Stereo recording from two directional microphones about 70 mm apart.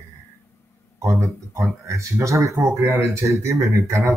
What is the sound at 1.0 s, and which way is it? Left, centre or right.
Speech, right.